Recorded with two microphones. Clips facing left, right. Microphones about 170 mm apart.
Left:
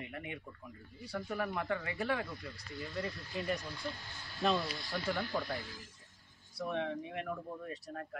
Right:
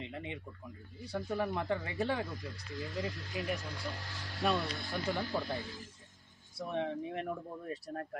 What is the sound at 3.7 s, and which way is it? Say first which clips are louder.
Speech: right 1 dB; 90° right.